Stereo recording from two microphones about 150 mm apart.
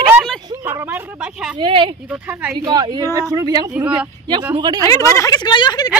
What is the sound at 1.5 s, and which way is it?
Speech, 35° right (ahead or behind).